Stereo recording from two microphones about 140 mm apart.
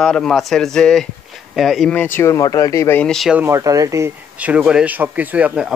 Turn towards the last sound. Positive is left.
turn(degrees=-10)  # may be behind; listen again after turning